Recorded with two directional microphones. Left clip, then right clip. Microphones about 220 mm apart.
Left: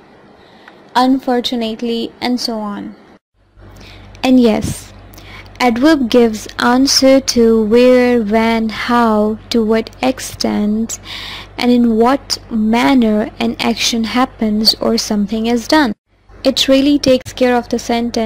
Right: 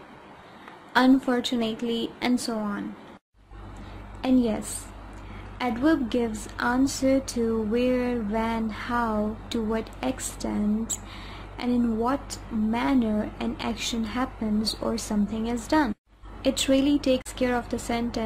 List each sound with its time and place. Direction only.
0.9 s a woman's voice: 15° left (ahead or behind)
4.2 s a woman's voice: 35° left (ahead or behind)